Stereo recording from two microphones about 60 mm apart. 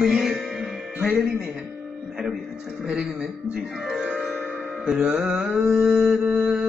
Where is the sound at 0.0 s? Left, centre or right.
Centre.